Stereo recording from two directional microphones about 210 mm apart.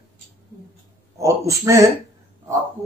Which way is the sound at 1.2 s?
15° right (ahead or behind).